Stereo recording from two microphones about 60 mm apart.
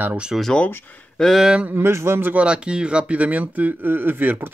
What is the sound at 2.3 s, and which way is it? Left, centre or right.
Speech, centre.